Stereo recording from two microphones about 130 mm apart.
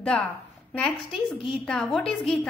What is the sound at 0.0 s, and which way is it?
A woman's voice, 10° left (ahead or behind).